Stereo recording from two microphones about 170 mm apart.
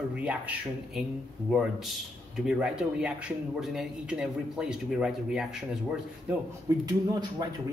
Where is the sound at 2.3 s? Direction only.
5° right (ahead or behind).